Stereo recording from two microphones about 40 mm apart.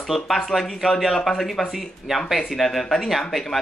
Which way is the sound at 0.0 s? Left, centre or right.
Centre.